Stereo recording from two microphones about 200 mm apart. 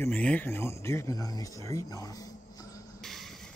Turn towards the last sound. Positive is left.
turn(degrees=0)  # may be behind; listen again after turning